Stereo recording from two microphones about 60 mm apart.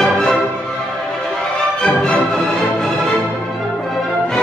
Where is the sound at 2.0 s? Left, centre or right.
Centre.